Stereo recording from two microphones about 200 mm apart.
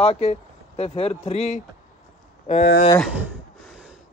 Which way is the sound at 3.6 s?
5° right (ahead or behind).